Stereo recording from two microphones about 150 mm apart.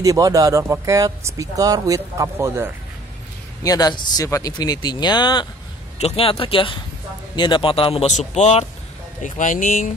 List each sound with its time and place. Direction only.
0.0 s speech: 25° right (ahead or behind)
3.6 s speech: 25° left (ahead or behind)
5.9 s speech: 40° left (ahead or behind)
9.2 s speech: 60° left (ahead or behind)